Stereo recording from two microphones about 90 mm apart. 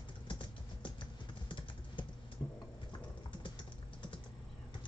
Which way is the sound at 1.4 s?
65° left (ahead or behind).